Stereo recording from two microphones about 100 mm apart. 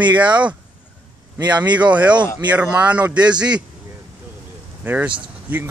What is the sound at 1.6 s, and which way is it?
Speech, 15° right (ahead or behind).